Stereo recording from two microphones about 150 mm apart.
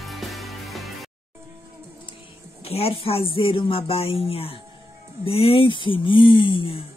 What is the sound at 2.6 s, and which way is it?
Speech, 40° left (ahead or behind).